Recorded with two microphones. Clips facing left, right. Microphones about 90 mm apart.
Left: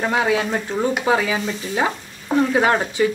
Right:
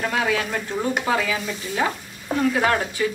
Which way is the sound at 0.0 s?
25° left (ahead or behind).